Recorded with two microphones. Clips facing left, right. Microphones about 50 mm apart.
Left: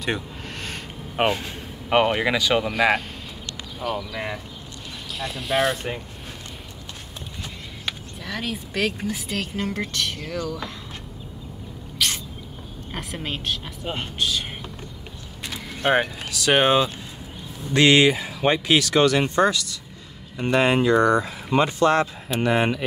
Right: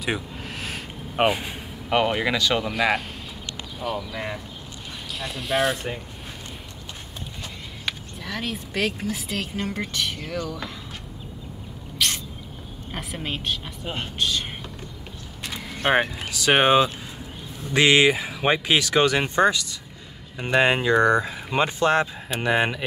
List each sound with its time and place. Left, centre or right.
0.0 s a sound: centre
1.9 s speech: centre
5.2 s speech: centre
7.8 s speech: centre
12.0 s rodents: centre
12.9 s speech: centre
15.5 s speech: centre
20.3 s speech: centre
20.6 s speech: right
21.2 s speech: centre
21.5 s speech: right
22.0 s speech: centre